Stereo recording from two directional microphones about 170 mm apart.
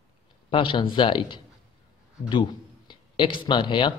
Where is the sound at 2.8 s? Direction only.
30° left (ahead or behind).